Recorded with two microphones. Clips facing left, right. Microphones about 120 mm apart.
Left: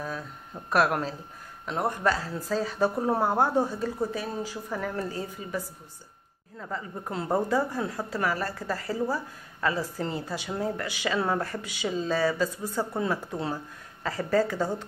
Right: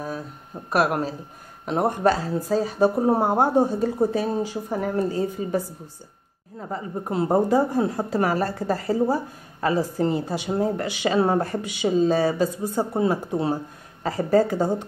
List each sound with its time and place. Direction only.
0.7 s speech: 10° right (ahead or behind)
1.7 s speech: 25° right (ahead or behind)
3.0 s a woman's voice: 35° right (ahead or behind); by 4.1 s 50° right (ahead or behind)
4.1 s speech: 25° right (ahead or behind)
4.6 s speech: 35° right (ahead or behind)
6.6 s speech: 20° right (ahead or behind)
9.8 s speech: 20° right (ahead or behind)